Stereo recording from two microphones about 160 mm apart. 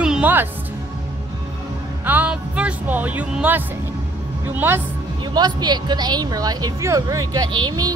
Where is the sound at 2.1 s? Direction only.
10° right (ahead or behind).